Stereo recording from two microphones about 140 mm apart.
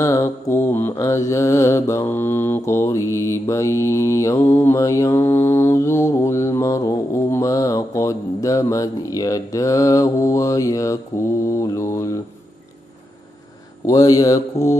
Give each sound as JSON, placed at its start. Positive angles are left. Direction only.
{"t": 0.0, "sound": "mantra", "side_deg": 20}
{"t": 13.8, "sound": "mantra", "side_deg": 25}